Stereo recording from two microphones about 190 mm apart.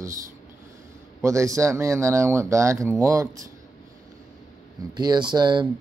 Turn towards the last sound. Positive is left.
turn(degrees=-25)  # may be behind; listen again after turning